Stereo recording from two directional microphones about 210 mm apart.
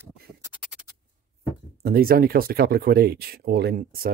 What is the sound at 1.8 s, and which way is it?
Speech, 45° right (ahead or behind).